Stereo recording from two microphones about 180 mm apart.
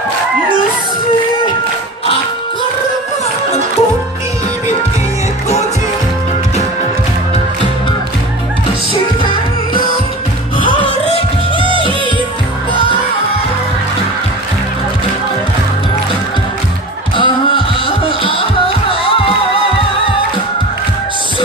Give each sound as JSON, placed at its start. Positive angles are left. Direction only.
{"t": 11.1, "sound": "music", "side_deg": 30}
{"t": 17.2, "sound": "music", "side_deg": 30}